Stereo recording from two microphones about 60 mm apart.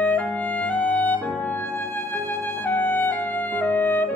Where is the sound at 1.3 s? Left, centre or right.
Left.